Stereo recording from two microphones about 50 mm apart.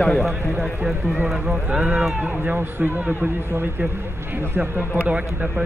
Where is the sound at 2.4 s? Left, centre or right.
Right.